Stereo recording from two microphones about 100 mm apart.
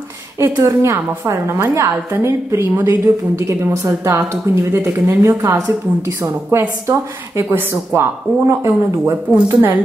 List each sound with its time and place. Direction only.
0.4 s a woman's voice: 30° right (ahead or behind)